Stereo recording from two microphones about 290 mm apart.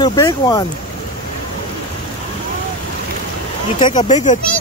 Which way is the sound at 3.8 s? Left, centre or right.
Left.